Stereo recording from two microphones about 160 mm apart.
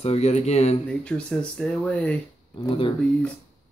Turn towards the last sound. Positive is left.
turn(degrees=10)  # may be behind; listen again after turning